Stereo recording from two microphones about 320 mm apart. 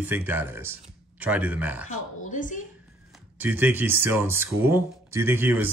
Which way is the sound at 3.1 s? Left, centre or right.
Centre.